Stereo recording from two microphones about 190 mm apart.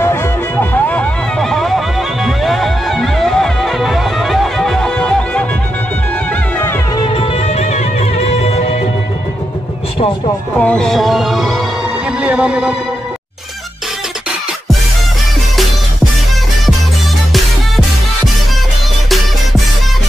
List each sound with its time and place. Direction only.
0.0 s music: 15° left (ahead or behind)
6.6 s music: 10° left (ahead or behind)
7.1 s music: 30° left (ahead or behind)
10.6 s music: 5° left (ahead or behind)